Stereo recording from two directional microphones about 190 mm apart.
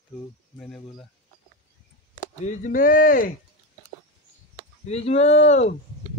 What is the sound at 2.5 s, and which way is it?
Speech, 45° left (ahead or behind).